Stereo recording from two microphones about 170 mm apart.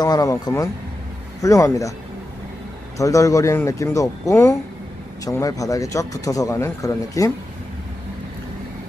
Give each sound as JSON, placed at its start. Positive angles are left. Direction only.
{"t": 0.0, "sound": "speech", "side_deg": 20}
{"t": 3.0, "sound": "speech", "side_deg": 20}